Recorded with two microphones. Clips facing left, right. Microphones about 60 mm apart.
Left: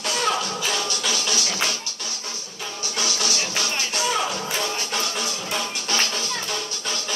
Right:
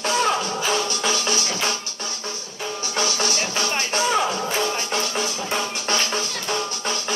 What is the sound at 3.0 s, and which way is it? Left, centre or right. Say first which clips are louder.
Music: right 3 dB; right.